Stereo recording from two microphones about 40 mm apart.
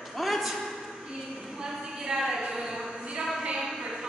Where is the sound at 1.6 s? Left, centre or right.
Centre.